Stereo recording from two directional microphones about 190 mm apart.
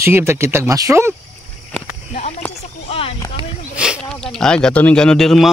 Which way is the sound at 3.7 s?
5° right (ahead or behind).